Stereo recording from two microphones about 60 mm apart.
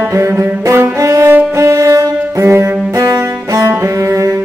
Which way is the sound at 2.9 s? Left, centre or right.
Right.